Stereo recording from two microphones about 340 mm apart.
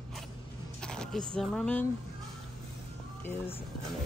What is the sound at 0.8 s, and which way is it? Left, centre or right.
Speech, centre.